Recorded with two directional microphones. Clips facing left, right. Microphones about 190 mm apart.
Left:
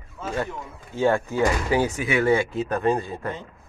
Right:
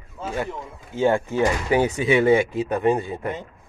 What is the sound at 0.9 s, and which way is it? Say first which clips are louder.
Speech: right 1 dB; 25° right (ahead or behind).